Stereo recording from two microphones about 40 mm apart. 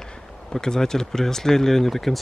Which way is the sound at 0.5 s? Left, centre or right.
Centre.